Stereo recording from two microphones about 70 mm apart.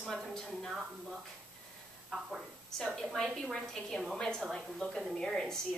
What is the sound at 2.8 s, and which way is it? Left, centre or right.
A woman's voice, centre.